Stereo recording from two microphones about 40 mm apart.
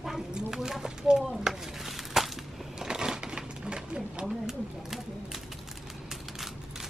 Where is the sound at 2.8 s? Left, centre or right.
Centre.